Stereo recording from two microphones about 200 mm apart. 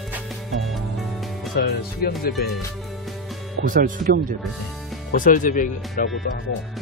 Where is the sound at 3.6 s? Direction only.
45° right (ahead or behind).